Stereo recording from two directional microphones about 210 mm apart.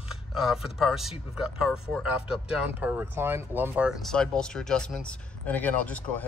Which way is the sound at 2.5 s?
5° right (ahead or behind).